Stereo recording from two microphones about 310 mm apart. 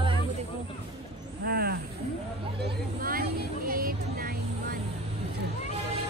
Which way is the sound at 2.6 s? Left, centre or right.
Right.